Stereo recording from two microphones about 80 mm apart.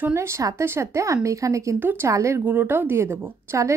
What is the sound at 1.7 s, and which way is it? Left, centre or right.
Speech, right.